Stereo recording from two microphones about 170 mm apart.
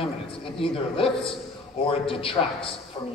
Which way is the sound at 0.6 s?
35° left (ahead or behind).